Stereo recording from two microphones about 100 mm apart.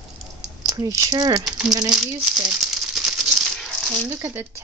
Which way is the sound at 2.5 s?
5° right (ahead or behind).